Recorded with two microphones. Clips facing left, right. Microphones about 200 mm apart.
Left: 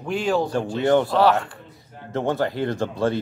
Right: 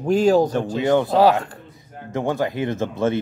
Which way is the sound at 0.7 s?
15° right (ahead or behind).